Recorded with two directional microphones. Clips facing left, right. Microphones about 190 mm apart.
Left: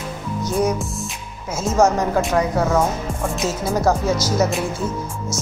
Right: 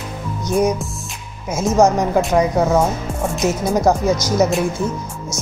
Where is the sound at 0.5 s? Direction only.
20° right (ahead or behind).